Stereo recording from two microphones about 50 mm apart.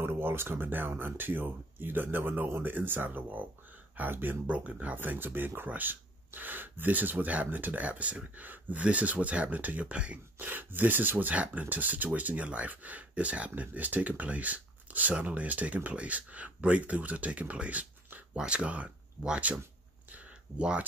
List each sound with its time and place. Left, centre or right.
0.0 s speech: right
4.5 s speech: right
4.9 s speech: right
10.4 s speech: right